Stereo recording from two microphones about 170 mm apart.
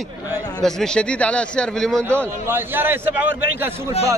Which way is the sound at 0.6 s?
5° left (ahead or behind).